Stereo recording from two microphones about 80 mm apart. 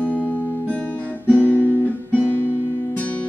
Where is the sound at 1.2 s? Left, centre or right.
Left.